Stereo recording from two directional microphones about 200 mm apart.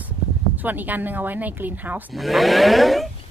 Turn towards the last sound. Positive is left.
turn(degrees=0)  # may be behind; listen again after turning